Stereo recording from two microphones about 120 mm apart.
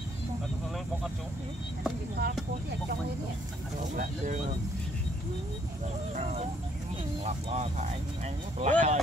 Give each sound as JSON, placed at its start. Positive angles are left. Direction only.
{"t": 1.8, "sound": "speech", "side_deg": 0}
{"t": 6.1, "sound": "speech", "side_deg": -75}
{"t": 7.2, "sound": "speech", "side_deg": -60}
{"t": 8.5, "sound": "speech", "side_deg": -75}